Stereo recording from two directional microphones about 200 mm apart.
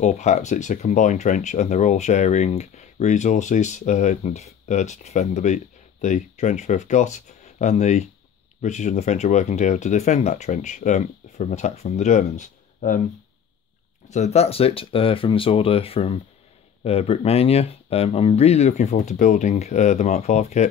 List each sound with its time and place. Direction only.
0.0 s speech: 35° left (ahead or behind)
14.0 s speech: 35° left (ahead or behind)